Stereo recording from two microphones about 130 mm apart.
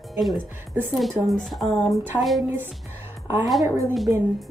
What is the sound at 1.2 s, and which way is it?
Speech, centre (ahead or behind).